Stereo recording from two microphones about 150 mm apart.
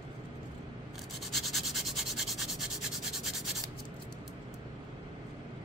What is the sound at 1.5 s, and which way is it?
Rub, centre (ahead or behind).